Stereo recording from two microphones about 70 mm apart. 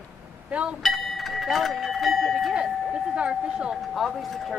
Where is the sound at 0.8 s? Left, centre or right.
Centre.